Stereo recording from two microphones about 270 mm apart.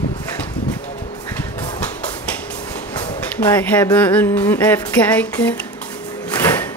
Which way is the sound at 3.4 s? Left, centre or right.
Centre.